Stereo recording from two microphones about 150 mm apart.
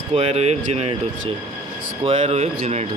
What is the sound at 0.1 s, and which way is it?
Speech, 45° right (ahead or behind).